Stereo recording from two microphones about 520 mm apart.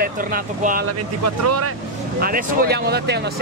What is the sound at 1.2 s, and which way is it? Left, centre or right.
Speech, right.